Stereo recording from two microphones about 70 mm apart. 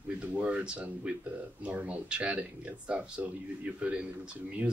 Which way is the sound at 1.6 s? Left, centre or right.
Centre.